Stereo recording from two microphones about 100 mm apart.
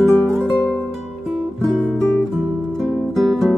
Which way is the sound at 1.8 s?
15° left (ahead or behind).